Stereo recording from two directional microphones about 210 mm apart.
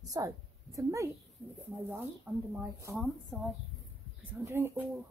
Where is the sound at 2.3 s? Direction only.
10° right (ahead or behind).